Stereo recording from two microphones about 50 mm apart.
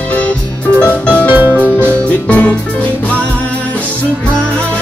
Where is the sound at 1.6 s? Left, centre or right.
Right.